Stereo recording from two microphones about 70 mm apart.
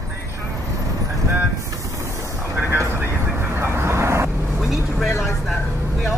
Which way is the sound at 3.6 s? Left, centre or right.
Right.